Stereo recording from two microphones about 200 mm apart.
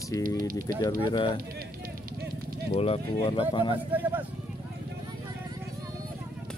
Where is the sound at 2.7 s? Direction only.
30° left (ahead or behind).